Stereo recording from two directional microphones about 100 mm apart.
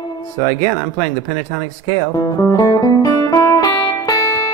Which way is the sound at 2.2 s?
40° left (ahead or behind).